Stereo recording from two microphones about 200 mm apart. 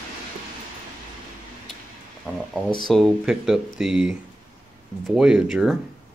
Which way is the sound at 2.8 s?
Centre (ahead or behind).